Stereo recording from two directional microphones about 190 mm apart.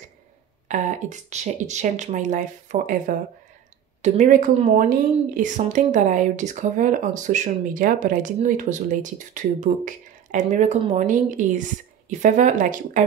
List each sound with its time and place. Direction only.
0.7 s speech: 40° right (ahead or behind)